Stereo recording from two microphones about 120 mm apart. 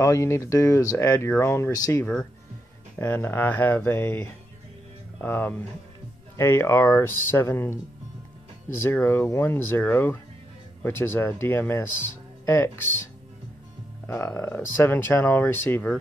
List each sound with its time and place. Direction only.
0.0 s speech: 25° left (ahead or behind)
8.8 s speech: 20° left (ahead or behind)
14.0 s speech: 20° left (ahead or behind)